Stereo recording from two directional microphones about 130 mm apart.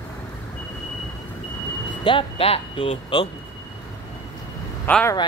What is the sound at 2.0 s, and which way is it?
Speech, 45° left (ahead or behind).